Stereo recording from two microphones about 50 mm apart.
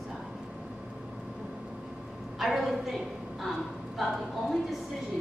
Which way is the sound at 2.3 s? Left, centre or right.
Centre.